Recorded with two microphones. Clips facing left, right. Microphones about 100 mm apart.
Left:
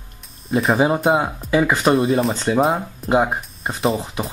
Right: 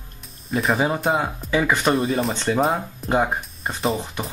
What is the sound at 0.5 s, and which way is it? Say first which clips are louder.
Speech: left 4 dB; 5° left (ahead or behind).